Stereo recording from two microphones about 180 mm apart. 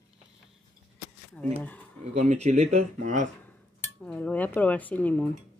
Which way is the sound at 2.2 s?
40° right (ahead or behind).